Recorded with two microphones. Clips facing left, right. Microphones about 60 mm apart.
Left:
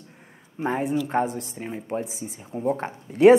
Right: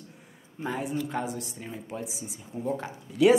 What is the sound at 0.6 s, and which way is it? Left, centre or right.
A woman's voice, left.